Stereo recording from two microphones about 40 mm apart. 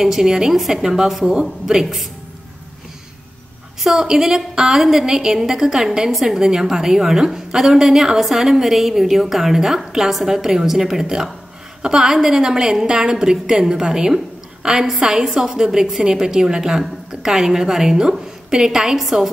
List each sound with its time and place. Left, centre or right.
0.0 s a woman's voice: centre
0.6 s a woman's voice: centre
0.8 s a woman's voice: centre
3.8 s a woman's voice: centre